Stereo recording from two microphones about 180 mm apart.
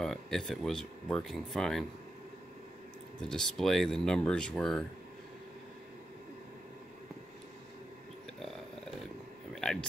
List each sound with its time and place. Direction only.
0.0 s speech: centre (ahead or behind)
3.2 s speech: 5° left (ahead or behind)
9.6 s a sound: 5° left (ahead or behind)